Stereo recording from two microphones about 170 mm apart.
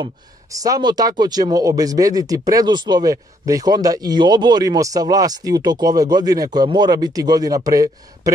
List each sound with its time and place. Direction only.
0.0 s speech: 20° right (ahead or behind)